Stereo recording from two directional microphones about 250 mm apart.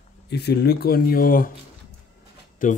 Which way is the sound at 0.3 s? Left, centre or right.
Left.